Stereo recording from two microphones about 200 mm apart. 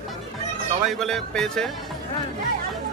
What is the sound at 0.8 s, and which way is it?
Speech, centre (ahead or behind).